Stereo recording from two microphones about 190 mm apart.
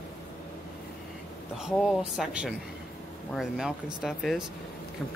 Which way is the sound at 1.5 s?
Centre (ahead or behind).